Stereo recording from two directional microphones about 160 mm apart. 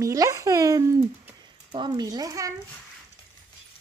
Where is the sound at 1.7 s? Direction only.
30° right (ahead or behind).